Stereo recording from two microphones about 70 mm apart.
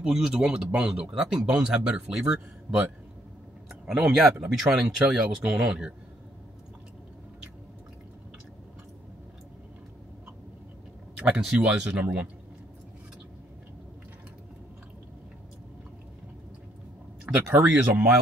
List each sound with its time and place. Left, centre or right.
0.0 s speech: centre
11.1 s speech: right
17.3 s speech: right
17.6 s speech: right